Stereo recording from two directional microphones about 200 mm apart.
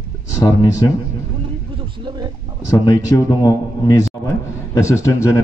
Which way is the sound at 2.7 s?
20° left (ahead or behind).